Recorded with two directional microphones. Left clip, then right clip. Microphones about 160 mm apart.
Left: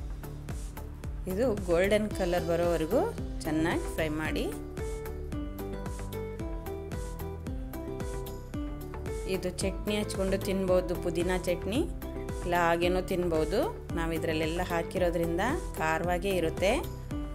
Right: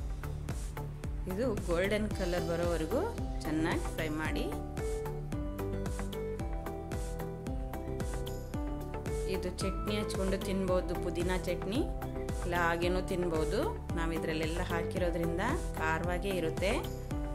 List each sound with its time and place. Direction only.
1.7 s speech: 15° left (ahead or behind)
5.3 s music: centre (ahead or behind)
9.2 s speech: 15° left (ahead or behind)